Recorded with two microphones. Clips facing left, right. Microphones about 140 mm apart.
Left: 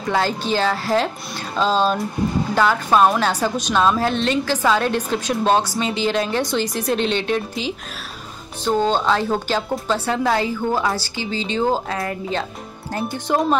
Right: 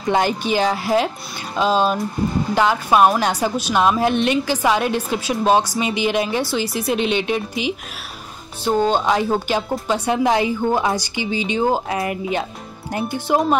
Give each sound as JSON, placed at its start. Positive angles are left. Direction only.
{"t": 0.1, "sound": "a woman's voice", "side_deg": -15}